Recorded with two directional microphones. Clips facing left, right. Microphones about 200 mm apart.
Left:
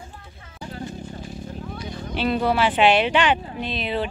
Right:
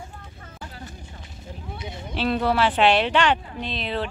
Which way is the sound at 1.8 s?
20° right (ahead or behind).